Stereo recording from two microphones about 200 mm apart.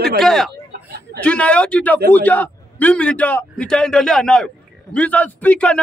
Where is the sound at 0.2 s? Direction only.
Centre (ahead or behind).